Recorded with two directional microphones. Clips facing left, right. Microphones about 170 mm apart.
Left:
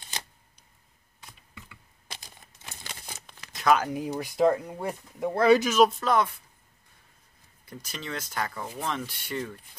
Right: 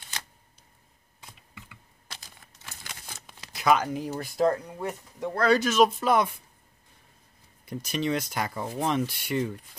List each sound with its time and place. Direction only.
2.0 s a sound: 20° left (ahead or behind)
3.5 s speech: centre (ahead or behind)
4.1 s speech: 15° left (ahead or behind)
5.9 s speech: 15° right (ahead or behind)
7.7 s speech: 15° right (ahead or behind)